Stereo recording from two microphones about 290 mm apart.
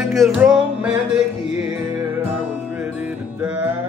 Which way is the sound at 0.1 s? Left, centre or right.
Centre.